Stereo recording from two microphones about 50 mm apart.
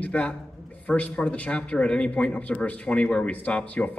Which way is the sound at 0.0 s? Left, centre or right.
Left.